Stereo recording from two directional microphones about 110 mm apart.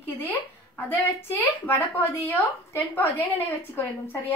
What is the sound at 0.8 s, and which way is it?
A woman's voice, 15° left (ahead or behind).